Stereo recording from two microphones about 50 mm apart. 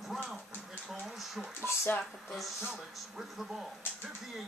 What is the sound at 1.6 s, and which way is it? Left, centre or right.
Speech, left.